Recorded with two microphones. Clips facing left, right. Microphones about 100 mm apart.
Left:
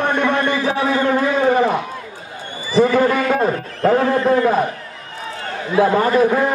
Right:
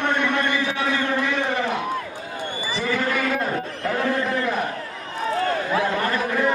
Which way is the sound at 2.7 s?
40° left (ahead or behind).